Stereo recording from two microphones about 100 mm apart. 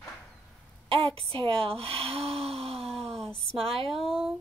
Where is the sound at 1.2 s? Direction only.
65° right (ahead or behind).